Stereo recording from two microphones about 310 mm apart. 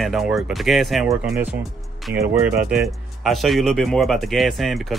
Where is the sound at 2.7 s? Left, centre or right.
Centre.